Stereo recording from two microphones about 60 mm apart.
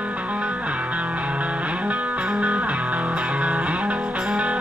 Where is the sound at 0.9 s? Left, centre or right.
Right.